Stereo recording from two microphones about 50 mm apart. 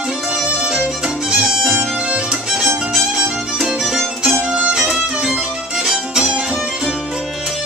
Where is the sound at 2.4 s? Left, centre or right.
Centre.